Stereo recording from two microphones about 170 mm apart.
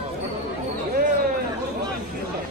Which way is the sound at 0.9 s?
60° right (ahead or behind).